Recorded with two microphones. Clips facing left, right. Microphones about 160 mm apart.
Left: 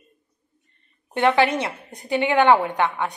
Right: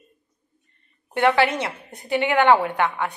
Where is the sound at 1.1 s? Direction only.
20° left (ahead or behind).